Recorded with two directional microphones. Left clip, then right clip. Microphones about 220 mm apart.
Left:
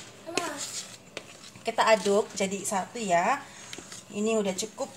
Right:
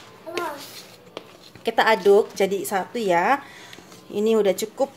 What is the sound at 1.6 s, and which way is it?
A woman's voice, 55° right (ahead or behind).